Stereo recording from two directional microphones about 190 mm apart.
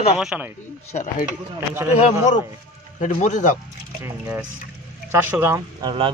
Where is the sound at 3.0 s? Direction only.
40° left (ahead or behind).